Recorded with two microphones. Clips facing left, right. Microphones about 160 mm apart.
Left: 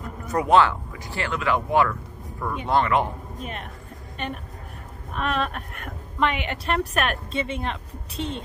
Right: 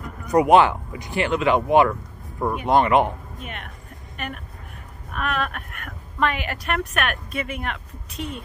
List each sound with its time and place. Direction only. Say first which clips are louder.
0.3 s speech: right 4 dB; 15° right (ahead or behind)
3.3 s a woman's voice: left 2 dB; 35° left (ahead or behind)